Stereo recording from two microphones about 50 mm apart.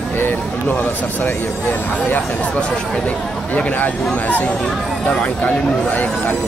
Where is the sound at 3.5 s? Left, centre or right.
Left.